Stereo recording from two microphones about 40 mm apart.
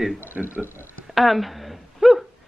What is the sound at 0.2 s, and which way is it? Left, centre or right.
Speech, right.